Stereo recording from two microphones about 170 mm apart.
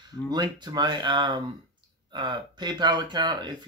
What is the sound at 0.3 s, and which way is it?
Speech, 25° right (ahead or behind).